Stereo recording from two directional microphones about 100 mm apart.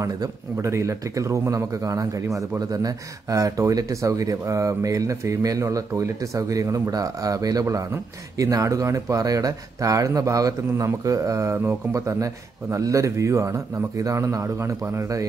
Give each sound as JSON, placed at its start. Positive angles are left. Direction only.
{"t": 0.0, "sound": "speech", "side_deg": -35}